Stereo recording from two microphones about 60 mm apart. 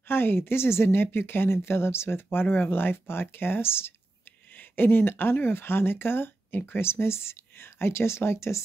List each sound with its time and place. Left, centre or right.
0.1 s speech: left